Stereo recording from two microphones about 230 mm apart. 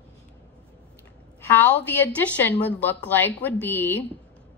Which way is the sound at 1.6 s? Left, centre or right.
Centre.